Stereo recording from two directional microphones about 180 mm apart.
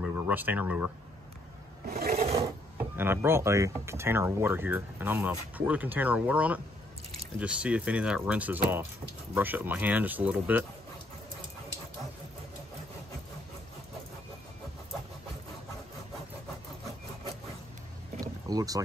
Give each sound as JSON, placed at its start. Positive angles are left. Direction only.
{"t": 0.0, "sound": "speech", "side_deg": -10}
{"t": 1.9, "sound": "filing", "side_deg": -60}
{"t": 2.1, "sound": "filing", "side_deg": -35}
{"t": 3.0, "sound": "speech", "side_deg": -15}
{"t": 18.2, "sound": "boat", "side_deg": -20}